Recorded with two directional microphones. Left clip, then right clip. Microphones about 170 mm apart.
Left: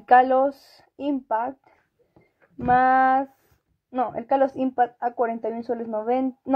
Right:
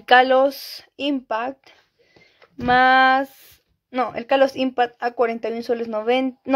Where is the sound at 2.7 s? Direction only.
5° right (ahead or behind).